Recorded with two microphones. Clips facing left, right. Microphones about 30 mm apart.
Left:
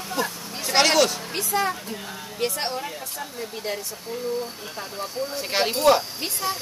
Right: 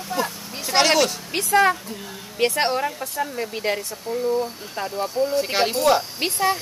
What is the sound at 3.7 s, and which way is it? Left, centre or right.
Speech, right.